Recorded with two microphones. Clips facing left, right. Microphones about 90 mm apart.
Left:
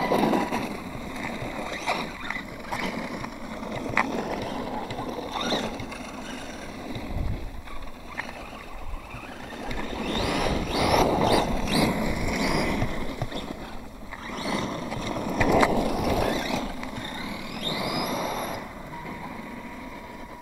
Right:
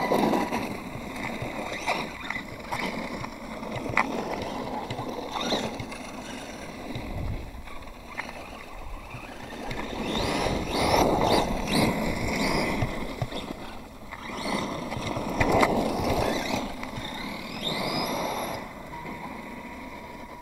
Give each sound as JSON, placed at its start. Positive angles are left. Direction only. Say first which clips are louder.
{"t": 0.0, "sound": "boat", "louder": "left 1 dB", "side_deg": 45}
{"t": 2.8, "sound": "vehicle", "louder": "left 1 dB", "side_deg": 35}
{"t": 5.3, "sound": "boat", "louder": "even", "side_deg": 40}
{"t": 9.6, "sound": "boat", "louder": "left 1 dB", "side_deg": 40}
{"t": 11.2, "sound": "a sound", "louder": "left 1 dB", "side_deg": 40}
{"t": 11.8, "sound": "vehicle", "louder": "left 1 dB", "side_deg": 30}
{"t": 12.4, "sound": "a sound", "louder": "left 2 dB", "side_deg": 50}
{"t": 14.3, "sound": "vehicle", "louder": "left 1 dB", "side_deg": 35}
{"t": 15.7, "sound": "skateboard", "louder": "left 1 dB", "side_deg": -5}
{"t": 16.3, "sound": "vehicle", "louder": "left 1 dB", "side_deg": 40}
{"t": 17.2, "sound": "a sound", "louder": "left 1 dB", "side_deg": 35}